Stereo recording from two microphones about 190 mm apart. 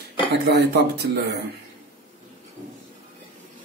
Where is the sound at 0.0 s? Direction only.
60° right (ahead or behind).